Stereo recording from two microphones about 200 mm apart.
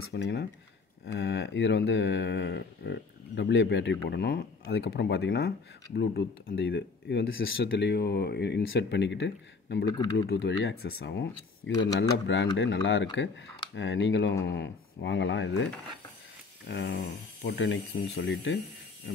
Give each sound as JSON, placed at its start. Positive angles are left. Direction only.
{"t": 0.1, "sound": "speech", "side_deg": 60}
{"t": 9.8, "sound": "speech", "side_deg": 20}
{"t": 10.3, "sound": "speech", "side_deg": 60}
{"t": 16.6, "sound": "speech", "side_deg": 55}